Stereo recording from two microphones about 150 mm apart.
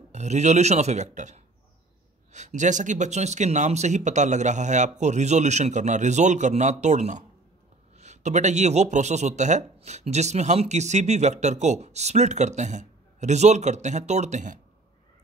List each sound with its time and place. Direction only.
0.1 s a man's voice: 50° right (ahead or behind)